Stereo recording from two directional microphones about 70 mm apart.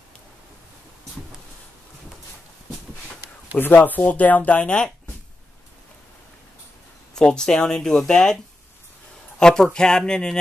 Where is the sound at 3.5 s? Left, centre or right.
Left.